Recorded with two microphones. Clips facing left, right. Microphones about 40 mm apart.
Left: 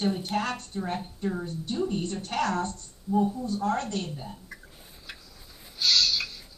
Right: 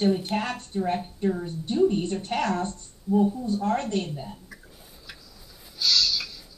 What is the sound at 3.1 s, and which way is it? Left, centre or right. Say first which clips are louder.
Speech: right 3 dB; centre.